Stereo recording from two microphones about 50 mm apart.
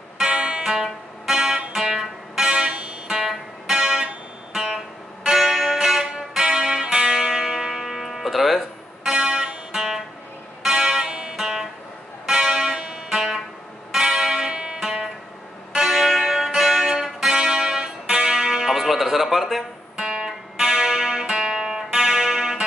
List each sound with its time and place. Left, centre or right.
0.2 s music: centre
0.7 s music: centre; by 2.9 s right
3.1 s music: centre
9.0 s music: centre
9.7 s music: centre
12.3 s church bell: centre
13.1 s music: centre
18.7 s music: centre
20.0 s music: centre
20.2 s music: centre